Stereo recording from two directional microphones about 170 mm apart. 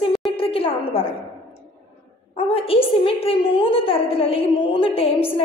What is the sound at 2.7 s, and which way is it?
A woman's voice, 35° left (ahead or behind).